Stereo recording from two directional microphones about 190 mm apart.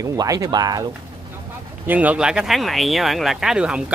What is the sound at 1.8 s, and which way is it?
Speech, 10° right (ahead or behind).